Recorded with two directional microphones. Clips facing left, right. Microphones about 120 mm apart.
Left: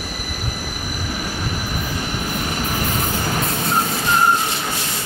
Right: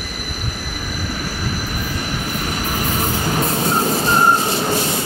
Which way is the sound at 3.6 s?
35° right (ahead or behind).